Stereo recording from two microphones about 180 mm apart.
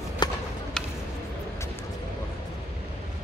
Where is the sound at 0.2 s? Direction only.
25° left (ahead or behind).